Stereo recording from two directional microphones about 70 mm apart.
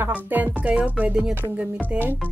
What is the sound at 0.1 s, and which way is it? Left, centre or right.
Speech, right.